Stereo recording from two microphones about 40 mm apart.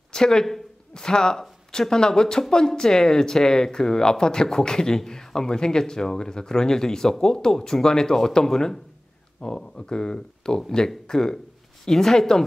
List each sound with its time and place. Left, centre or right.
0.1 s speech: centre
0.5 s a sound: centre
1.0 s speech: centre